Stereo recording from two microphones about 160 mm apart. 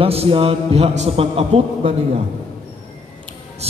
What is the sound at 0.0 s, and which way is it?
A man's voice, 35° right (ahead or behind).